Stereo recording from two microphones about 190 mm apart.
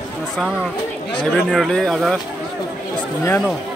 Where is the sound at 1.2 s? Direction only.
5° left (ahead or behind).